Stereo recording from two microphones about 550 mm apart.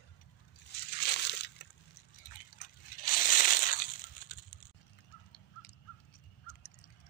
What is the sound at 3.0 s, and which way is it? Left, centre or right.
Crushing, centre.